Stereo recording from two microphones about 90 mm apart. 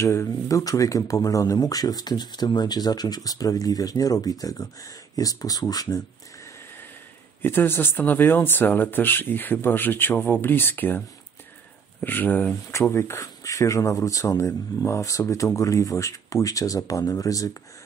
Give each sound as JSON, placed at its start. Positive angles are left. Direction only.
{"t": 0.0, "sound": "speech", "side_deg": 30}
{"t": 7.4, "sound": "speech", "side_deg": 25}
{"t": 12.9, "sound": "speech", "side_deg": 35}